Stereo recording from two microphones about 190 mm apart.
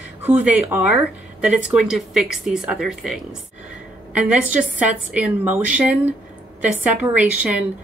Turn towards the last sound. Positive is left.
turn(degrees=-5)  # may be behind; listen again after turning